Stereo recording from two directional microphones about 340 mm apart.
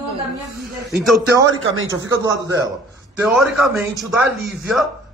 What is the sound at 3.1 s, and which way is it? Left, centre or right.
A man's voice, centre.